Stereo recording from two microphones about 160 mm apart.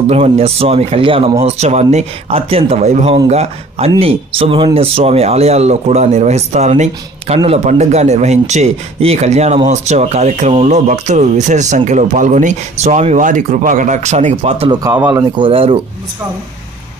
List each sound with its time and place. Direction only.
0.0 s speech: 40° right (ahead or behind)
14.7 s speech: 20° right (ahead or behind)
15.3 s speech: 35° right (ahead or behind)